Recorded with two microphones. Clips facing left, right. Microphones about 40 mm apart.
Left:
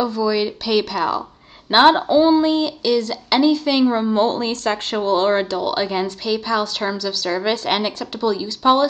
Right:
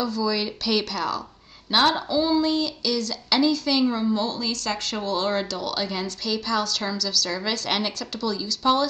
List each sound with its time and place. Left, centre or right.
0.0 s speech: left
1.7 s speech: left